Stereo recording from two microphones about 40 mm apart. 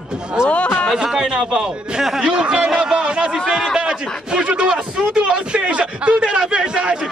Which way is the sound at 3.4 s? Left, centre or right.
Centre.